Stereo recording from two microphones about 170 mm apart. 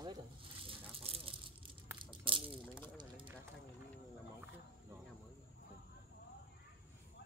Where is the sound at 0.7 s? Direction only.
35° right (ahead or behind).